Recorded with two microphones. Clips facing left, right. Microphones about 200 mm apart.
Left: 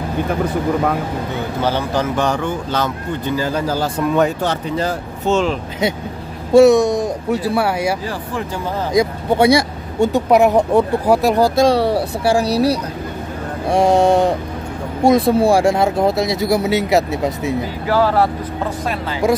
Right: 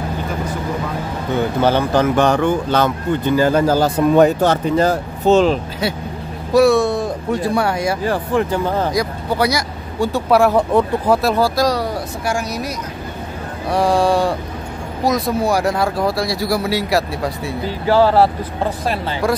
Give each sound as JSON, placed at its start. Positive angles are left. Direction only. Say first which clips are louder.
{"t": 1.6, "sound": "speech", "louder": "right 3 dB", "side_deg": -55}
{"t": 6.5, "sound": "speech", "louder": "left 3 dB", "side_deg": 20}
{"t": 8.0, "sound": "speech", "louder": "right 6 dB", "side_deg": -60}
{"t": 8.9, "sound": "speech", "louder": "left 4 dB", "side_deg": 25}
{"t": 13.7, "sound": "speech", "louder": "left 3 dB", "side_deg": 25}
{"t": 17.8, "sound": "speech", "louder": "right 3 dB", "side_deg": -30}
{"t": 19.2, "sound": "speech", "louder": "left 3 dB", "side_deg": 20}